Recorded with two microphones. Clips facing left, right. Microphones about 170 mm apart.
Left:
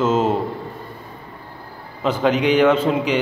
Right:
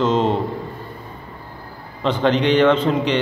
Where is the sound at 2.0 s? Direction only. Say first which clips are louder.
Even; 10° left (ahead or behind).